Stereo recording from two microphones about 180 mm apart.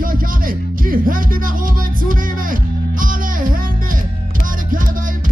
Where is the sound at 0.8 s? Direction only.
50° right (ahead or behind).